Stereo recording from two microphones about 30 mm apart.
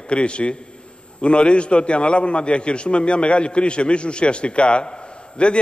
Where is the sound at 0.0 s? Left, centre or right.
Left.